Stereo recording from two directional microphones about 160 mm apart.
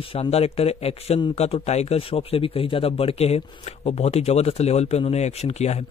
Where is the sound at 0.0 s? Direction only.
35° left (ahead or behind).